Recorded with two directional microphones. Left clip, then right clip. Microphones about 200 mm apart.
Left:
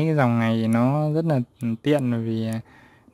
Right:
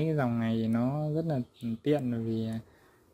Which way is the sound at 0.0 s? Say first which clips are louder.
Left 9 dB; 35° left (ahead or behind).